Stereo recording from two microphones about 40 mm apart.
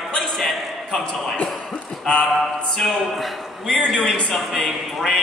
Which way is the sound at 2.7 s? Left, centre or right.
Centre.